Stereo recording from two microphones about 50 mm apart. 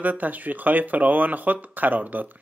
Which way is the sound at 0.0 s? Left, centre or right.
Right.